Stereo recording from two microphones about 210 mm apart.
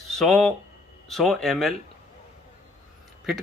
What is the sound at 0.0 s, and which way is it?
Speech, centre (ahead or behind).